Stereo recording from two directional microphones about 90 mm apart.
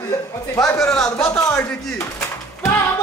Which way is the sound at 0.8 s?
5° left (ahead or behind).